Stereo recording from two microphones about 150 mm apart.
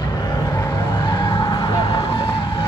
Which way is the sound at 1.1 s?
30° left (ahead or behind).